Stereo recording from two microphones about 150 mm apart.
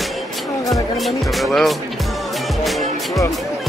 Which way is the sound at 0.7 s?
Centre (ahead or behind).